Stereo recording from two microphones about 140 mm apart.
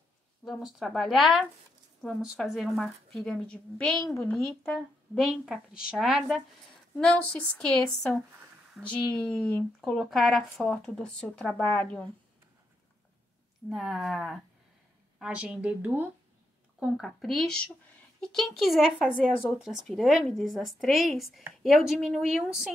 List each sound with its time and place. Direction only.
0.5 s speech: 5° right (ahead or behind)
4.2 s speech: 20° left (ahead or behind)
4.7 s speech: centre (ahead or behind)
13.7 s speech: centre (ahead or behind)
16.8 s speech: centre (ahead or behind)